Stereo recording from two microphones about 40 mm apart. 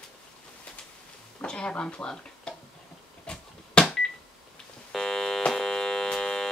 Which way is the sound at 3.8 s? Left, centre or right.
Left.